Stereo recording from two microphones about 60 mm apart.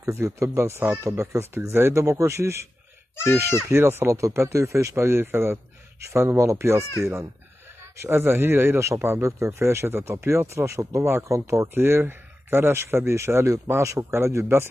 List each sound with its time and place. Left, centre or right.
0.0 s speech: right
2.0 s speech: right
3.7 s speech: right
6.0 s speech: right
11.7 s speech: right